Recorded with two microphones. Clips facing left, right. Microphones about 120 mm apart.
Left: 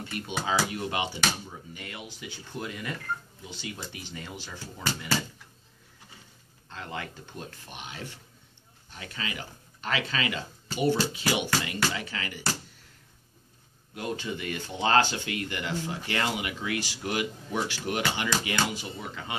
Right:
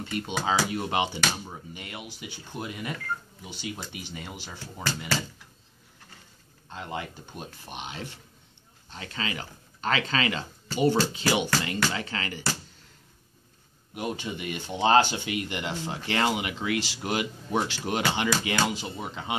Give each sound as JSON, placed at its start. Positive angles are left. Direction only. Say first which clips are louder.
{"t": 0.5, "sound": "speech", "louder": "right 2 dB", "side_deg": -25}
{"t": 6.7, "sound": "speech", "louder": "right 2 dB", "side_deg": -20}
{"t": 13.9, "sound": "speech", "louder": "right 1 dB", "side_deg": -20}